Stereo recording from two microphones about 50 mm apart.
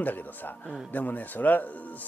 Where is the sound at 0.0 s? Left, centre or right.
Left.